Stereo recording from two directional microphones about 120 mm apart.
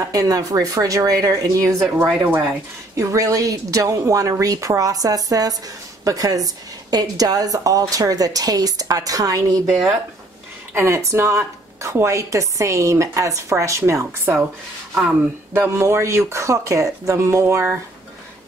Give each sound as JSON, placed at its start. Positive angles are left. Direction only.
{"t": 0.1, "sound": "a woman's voice", "side_deg": -30}
{"t": 9.7, "sound": "speech", "side_deg": 0}
{"t": 10.7, "sound": "speech", "side_deg": -20}
{"t": 15.5, "sound": "speech", "side_deg": -20}